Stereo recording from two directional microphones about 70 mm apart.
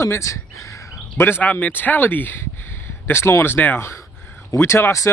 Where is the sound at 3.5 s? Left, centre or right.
Left.